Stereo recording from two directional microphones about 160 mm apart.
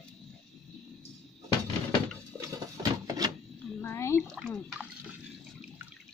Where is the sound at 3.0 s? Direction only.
20° right (ahead or behind).